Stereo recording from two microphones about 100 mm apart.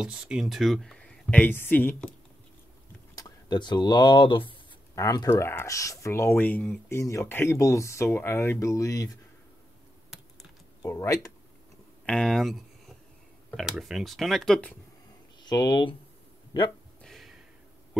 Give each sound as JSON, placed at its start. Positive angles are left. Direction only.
{"t": 0.0, "sound": "speech", "side_deg": -10}
{"t": 3.2, "sound": "speech", "side_deg": 40}
{"t": 4.9, "sound": "speech", "side_deg": 35}
{"t": 5.3, "sound": "speech", "side_deg": 25}
{"t": 6.4, "sound": "speech", "side_deg": 15}
{"t": 10.8, "sound": "speech", "side_deg": 30}
{"t": 12.1, "sound": "speech", "side_deg": 5}
{"t": 15.4, "sound": "speech", "side_deg": 40}
{"t": 17.0, "sound": "a sound", "side_deg": 0}